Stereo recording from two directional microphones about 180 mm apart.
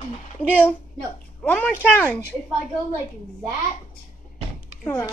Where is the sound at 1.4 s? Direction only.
10° left (ahead or behind).